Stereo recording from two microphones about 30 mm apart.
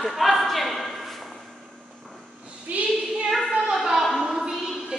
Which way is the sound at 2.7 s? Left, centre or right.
Right.